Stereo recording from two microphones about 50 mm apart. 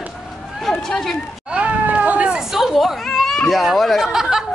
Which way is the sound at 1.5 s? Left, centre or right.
Right.